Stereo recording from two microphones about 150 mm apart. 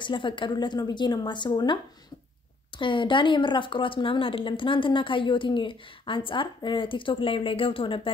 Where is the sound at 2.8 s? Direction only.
35° left (ahead or behind).